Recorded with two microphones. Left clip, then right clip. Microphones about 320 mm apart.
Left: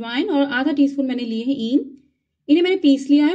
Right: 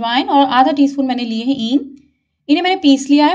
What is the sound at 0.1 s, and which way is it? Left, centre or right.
A woman's voice, right.